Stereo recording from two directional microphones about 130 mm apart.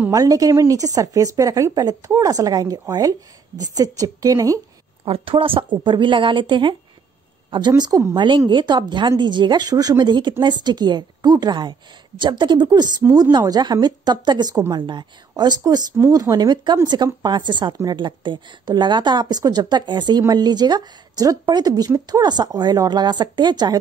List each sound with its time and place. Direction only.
0.1 s a woman's voice: 25° right (ahead or behind)
5.0 s speech: 45° right (ahead or behind)